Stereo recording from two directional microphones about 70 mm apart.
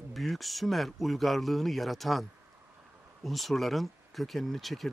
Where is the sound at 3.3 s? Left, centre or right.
Centre.